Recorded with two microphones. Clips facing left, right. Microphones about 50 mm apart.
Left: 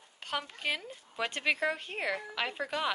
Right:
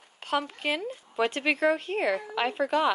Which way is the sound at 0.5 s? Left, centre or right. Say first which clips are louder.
Right 5 dB; centre.